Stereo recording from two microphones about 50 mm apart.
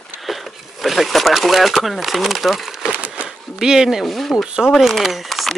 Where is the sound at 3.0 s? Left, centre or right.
Right.